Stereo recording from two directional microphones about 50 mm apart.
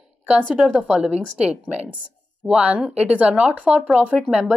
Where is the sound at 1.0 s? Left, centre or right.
Centre.